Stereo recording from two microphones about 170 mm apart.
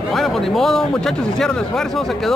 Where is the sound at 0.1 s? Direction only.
Centre (ahead or behind).